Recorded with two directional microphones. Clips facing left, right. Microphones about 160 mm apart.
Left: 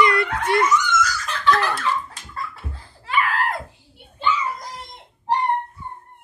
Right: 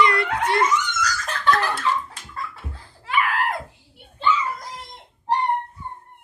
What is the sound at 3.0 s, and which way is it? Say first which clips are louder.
Screaming: left 1 dB; 10° right (ahead or behind).